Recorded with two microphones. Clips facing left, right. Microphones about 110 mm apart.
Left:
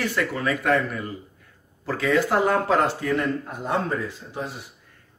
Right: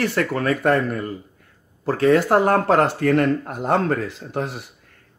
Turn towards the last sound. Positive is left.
turn(degrees=-65)  # may be behind; listen again after turning